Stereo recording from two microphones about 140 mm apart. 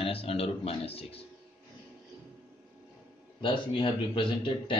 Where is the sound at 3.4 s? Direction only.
35° left (ahead or behind).